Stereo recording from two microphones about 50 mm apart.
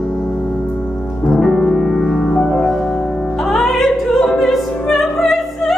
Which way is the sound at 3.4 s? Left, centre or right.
Centre.